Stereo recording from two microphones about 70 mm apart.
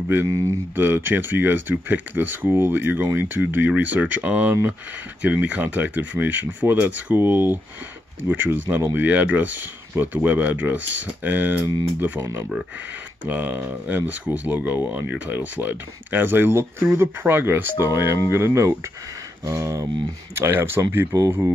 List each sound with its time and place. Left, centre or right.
0.7 s speech: right
13.3 s speech: right
20.3 s speech: right